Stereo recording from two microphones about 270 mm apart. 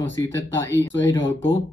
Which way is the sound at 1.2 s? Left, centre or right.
Left.